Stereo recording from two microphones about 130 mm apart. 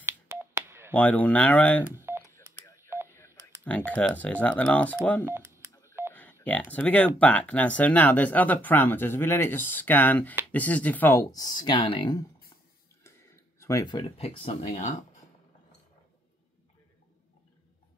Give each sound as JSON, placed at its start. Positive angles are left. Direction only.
{"t": 0.0, "sound": "telephone dialing", "side_deg": -20}
{"t": 0.9, "sound": "speech", "side_deg": 10}
{"t": 2.0, "sound": "telephone dialing", "side_deg": -15}
{"t": 2.2, "sound": "telephone dialing", "side_deg": 20}
{"t": 3.6, "sound": "speech", "side_deg": 10}
{"t": 5.2, "sound": "speech", "side_deg": -20}
{"t": 6.1, "sound": "telephone dialing", "side_deg": 10}
{"t": 6.7, "sound": "speech", "side_deg": 10}
{"t": 11.3, "sound": "speech", "side_deg": 30}
{"t": 13.0, "sound": "a sound", "side_deg": 20}
{"t": 14.0, "sound": "speech", "side_deg": 50}